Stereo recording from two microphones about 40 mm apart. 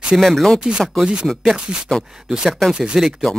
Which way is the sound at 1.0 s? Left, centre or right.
Right.